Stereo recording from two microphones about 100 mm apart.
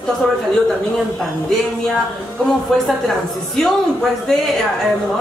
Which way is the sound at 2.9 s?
Centre (ahead or behind).